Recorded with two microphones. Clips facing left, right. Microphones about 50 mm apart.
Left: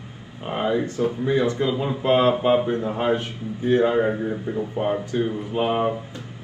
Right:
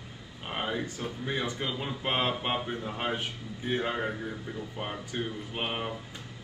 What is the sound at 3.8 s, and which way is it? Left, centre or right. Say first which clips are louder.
Speech: left 12 dB; left.